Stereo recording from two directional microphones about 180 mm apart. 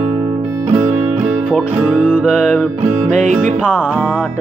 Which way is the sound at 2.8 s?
40° right (ahead or behind).